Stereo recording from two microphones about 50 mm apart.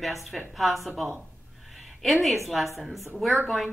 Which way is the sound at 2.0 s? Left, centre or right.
Centre.